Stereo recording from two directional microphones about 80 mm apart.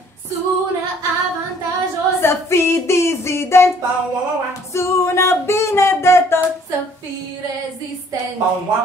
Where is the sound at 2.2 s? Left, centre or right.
Left.